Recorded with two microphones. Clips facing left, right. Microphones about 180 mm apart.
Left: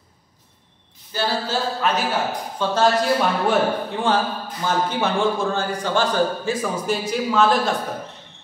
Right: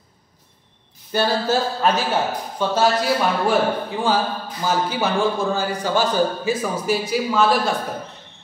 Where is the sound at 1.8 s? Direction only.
35° right (ahead or behind).